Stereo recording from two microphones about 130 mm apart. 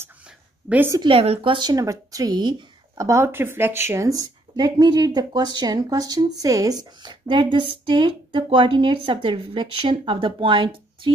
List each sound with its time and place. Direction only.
0.7 s a woman's voice: 15° right (ahead or behind)
1.0 s speech: 45° right (ahead or behind)